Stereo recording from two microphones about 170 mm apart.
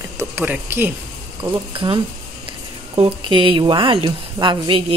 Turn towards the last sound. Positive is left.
turn(degrees=-30)  # may be behind; listen again after turning